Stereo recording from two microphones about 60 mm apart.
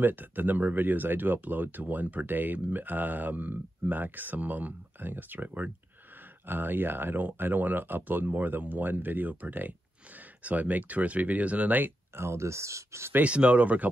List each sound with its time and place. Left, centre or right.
0.0 s speech: right
12.2 s speech: right
13.1 s speech: right